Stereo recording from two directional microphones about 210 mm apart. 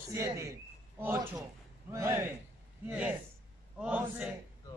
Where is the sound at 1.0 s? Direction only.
10° right (ahead or behind).